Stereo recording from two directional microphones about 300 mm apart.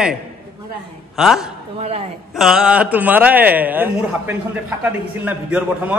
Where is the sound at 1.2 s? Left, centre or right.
Centre.